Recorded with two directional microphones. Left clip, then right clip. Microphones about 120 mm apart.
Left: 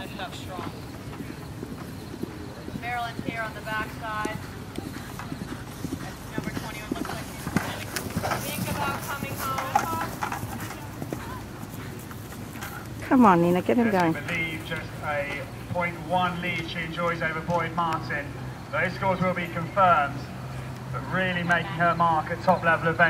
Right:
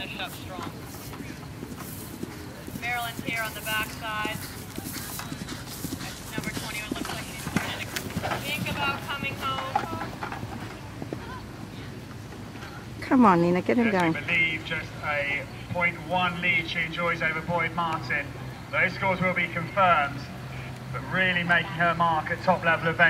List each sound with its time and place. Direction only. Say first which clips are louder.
2.8 s speech: right 1 dB; 15° right (ahead or behind)
6.3 s clip-clop: right 1 dB; 20° right (ahead or behind); by 8.4 s 5° left (ahead or behind)
8.5 s vehicle: right 1 dB; 15° right (ahead or behind)
9.6 s music: left 3 dB; 35° left (ahead or behind)
13.1 s speech: left 1 dB; 15° right (ahead or behind)
21.1 s speech: right 2 dB; 5° right (ahead or behind)